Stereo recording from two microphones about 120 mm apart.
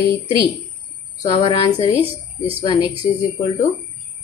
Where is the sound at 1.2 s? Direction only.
45° left (ahead or behind).